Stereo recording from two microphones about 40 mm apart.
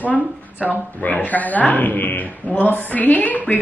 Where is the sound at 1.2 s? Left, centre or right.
Left.